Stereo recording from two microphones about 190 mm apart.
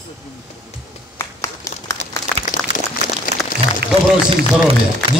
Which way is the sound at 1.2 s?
15° left (ahead or behind).